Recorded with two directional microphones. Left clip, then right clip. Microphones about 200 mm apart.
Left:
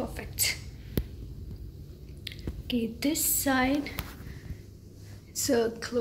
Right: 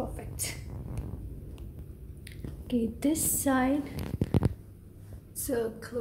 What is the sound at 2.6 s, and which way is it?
Speech, 20° right (ahead or behind).